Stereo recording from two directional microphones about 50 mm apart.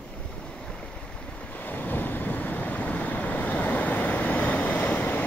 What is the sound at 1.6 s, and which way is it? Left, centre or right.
Vehicle, left.